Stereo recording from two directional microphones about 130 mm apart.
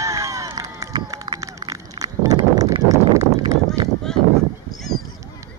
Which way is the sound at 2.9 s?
25° right (ahead or behind).